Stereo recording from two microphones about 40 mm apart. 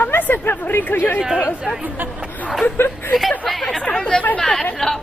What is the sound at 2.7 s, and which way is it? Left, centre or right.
Speech, left.